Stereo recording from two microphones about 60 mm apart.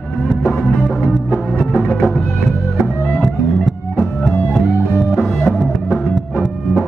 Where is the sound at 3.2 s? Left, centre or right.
Centre.